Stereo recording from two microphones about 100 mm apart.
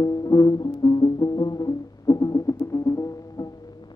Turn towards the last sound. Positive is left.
turn(degrees=35)  # may be behind; listen again after turning